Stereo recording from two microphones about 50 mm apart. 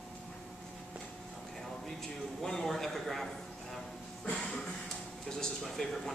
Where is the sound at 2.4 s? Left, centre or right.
Centre.